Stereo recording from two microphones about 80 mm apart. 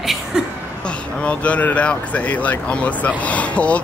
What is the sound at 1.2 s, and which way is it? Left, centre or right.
Speech, centre.